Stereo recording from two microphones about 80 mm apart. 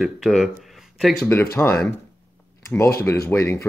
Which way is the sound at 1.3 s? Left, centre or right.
Left.